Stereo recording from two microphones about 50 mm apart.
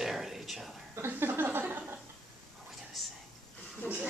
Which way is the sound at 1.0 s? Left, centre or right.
Right.